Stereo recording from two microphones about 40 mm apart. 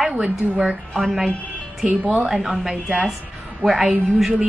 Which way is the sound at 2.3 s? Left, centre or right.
Centre.